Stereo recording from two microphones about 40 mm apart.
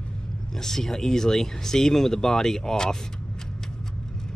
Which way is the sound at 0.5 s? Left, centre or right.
Centre.